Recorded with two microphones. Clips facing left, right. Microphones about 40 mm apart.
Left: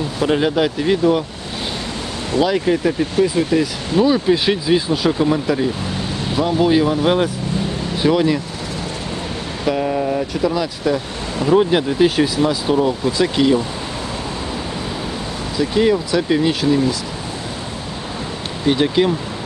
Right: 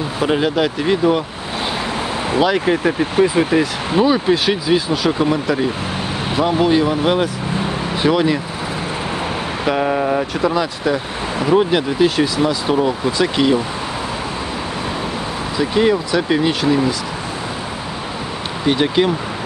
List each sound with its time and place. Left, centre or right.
0.2 s speech: centre
2.4 s speech: centre
4.5 s speech: centre
6.3 s speech: centre
6.6 s speech: centre
7.5 s vehicle: right
8.1 s speech: centre
9.7 s speech: right
11.7 s speech: centre
15.5 s speech: centre
18.7 s speech: centre